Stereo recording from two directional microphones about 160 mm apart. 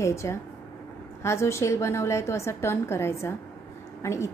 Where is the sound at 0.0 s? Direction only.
20° left (ahead or behind).